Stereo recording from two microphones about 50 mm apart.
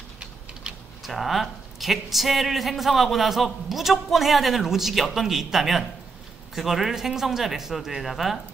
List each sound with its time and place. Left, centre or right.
0.7 s typing: right
1.0 s speech: centre